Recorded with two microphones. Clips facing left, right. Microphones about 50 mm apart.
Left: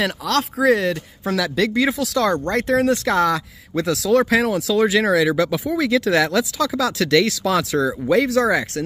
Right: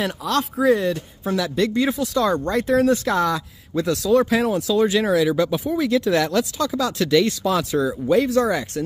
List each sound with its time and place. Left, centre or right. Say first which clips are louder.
0.0 s speech: left 2 dB; left
3.1 s speech: left 2 dB; left